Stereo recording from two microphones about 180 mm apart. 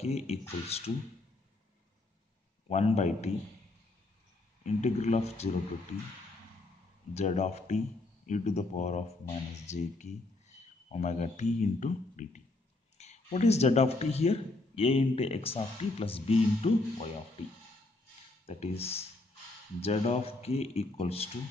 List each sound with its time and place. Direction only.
0.0 s speech: 35° left (ahead or behind)
2.7 s speech: 35° left (ahead or behind)
4.6 s speech: 40° left (ahead or behind)
7.2 s speech: 40° left (ahead or behind)
18.4 s speech: 35° left (ahead or behind)